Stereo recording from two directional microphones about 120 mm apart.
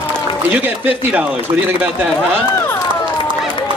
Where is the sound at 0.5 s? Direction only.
15° right (ahead or behind).